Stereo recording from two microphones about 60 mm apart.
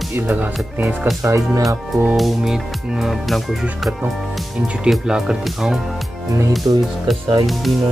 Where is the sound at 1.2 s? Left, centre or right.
Right.